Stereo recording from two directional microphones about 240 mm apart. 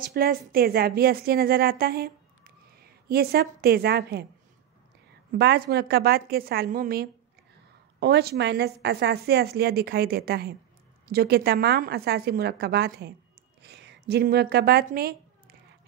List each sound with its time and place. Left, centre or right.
0.0 s a woman's voice: right
5.4 s a woman's voice: right